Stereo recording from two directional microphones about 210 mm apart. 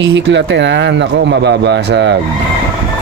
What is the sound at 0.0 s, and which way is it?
Speech, 55° right (ahead or behind).